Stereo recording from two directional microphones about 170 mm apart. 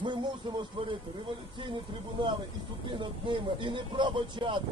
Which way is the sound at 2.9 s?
30° right (ahead or behind).